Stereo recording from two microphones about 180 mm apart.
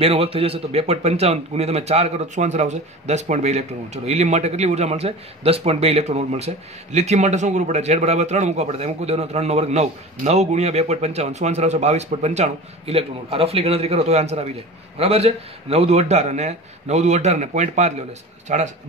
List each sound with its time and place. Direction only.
0.0 s speech: 30° right (ahead or behind)